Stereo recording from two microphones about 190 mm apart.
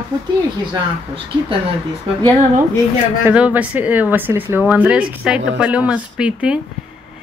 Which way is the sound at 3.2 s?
5° right (ahead or behind).